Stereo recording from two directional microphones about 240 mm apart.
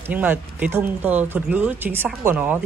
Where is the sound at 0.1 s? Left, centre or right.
Centre.